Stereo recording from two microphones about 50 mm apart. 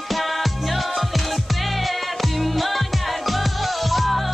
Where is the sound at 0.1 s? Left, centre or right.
Centre.